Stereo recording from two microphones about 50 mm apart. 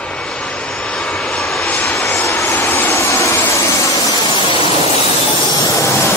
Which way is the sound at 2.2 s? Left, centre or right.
Left.